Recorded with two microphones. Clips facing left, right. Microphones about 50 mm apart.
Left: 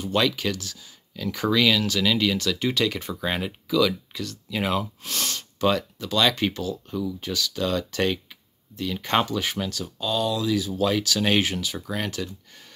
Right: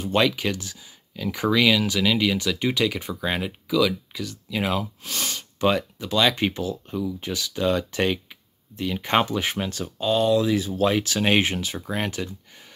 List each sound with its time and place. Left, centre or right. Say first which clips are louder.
0.0 s speech: right 2 dB; right; by 5.5 s centre
5.6 s speech: right 1 dB; centre